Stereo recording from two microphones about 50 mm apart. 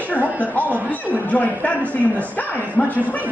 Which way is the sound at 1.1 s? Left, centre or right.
Left.